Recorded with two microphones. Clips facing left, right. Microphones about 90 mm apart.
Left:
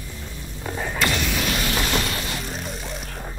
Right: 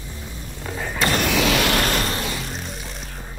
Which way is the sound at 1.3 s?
90° right.